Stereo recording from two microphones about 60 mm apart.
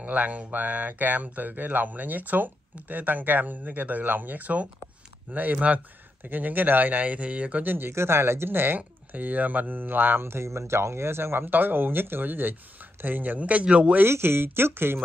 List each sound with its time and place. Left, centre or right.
0.0 s speech: right
14.0 s speech: right